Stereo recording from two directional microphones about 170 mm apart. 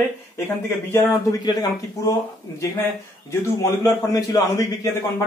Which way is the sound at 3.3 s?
20° left (ahead or behind).